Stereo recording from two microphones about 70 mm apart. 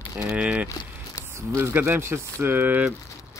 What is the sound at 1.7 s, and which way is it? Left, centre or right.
Speech, right.